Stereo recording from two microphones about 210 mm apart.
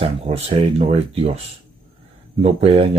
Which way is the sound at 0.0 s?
30° right (ahead or behind).